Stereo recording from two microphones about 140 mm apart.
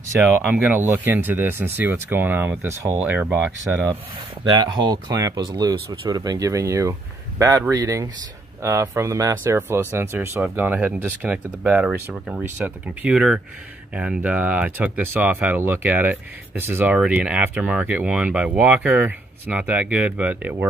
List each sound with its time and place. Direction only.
0.5 s speech: 15° right (ahead or behind)
4.5 s speech: 30° right (ahead or behind); by 20.6 s 10° right (ahead or behind)